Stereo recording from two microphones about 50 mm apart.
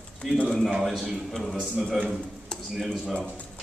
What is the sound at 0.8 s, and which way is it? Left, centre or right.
Speech, centre.